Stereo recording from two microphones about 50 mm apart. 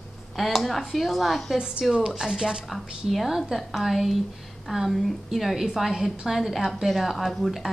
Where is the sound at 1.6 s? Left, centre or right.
Centre.